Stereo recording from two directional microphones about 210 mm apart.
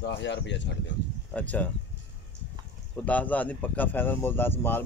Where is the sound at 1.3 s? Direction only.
5° left (ahead or behind).